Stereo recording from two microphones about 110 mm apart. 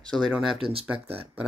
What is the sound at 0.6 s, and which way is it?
Speech, 60° right (ahead or behind).